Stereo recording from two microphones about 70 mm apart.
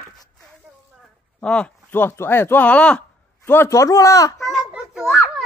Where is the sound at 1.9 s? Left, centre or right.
Left.